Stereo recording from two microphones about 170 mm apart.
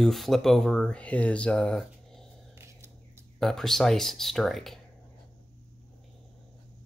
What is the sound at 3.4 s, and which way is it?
Speech, centre (ahead or behind).